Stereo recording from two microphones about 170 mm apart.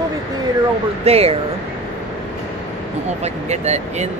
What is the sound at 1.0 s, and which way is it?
Speech, 35° right (ahead or behind).